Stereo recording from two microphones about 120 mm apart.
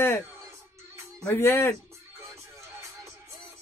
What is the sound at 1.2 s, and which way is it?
Speech, 20° left (ahead or behind).